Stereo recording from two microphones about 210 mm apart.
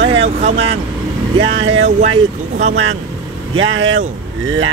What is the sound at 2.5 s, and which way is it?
Speech, 40° right (ahead or behind).